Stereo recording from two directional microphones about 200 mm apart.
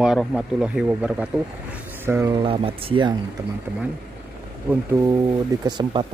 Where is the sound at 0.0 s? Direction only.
Centre (ahead or behind).